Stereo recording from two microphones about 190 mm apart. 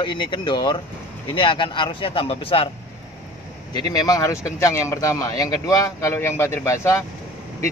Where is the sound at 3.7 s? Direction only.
20° left (ahead or behind).